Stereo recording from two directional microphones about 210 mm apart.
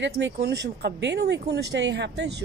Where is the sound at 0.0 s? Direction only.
55° right (ahead or behind).